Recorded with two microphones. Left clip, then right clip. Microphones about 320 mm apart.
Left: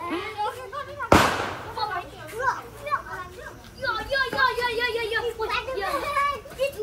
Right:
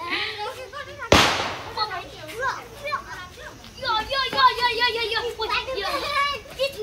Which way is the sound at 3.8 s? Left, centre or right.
Centre.